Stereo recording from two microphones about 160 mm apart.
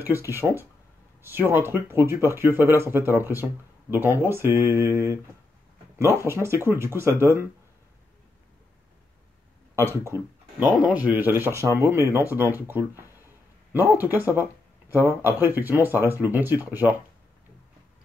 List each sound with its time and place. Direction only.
0.0 s speech: 15° right (ahead or behind)
10.9 s speech: 10° right (ahead or behind)